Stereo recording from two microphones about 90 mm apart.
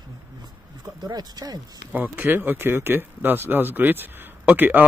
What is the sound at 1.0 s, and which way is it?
Speech, 50° right (ahead or behind).